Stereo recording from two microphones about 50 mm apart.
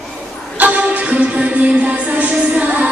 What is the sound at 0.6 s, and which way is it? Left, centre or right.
Music, right.